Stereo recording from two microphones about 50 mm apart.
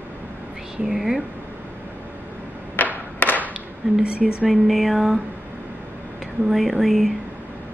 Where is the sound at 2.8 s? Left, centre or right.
Left.